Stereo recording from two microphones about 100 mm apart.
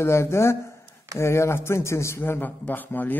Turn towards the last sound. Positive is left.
turn(degrees=20)  # may be behind; listen again after turning